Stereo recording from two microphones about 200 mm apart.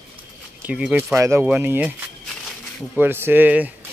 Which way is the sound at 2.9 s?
10° right (ahead or behind).